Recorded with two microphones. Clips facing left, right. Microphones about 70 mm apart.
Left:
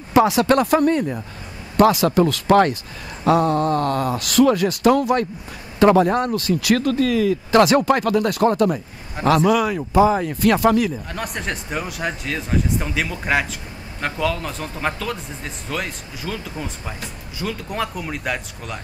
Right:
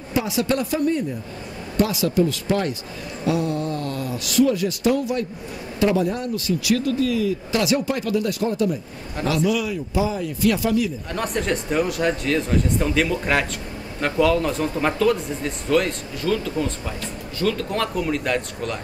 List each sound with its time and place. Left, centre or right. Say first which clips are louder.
0.1 s speech: left 7 dB; left
3.3 s speech: left 6 dB; left
11.1 s speech: right 3 dB; centre